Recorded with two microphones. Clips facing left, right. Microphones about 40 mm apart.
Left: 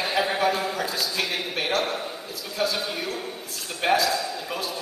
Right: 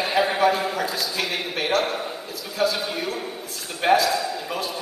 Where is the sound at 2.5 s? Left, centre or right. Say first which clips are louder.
Right 3 dB; centre.